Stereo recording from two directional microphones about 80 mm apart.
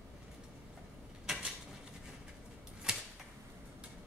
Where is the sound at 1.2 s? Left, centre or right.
Centre.